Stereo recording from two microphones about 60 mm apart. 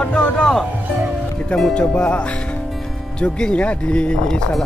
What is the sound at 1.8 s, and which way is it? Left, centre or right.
Speech, centre.